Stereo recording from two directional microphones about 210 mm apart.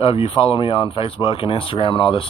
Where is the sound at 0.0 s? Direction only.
25° left (ahead or behind).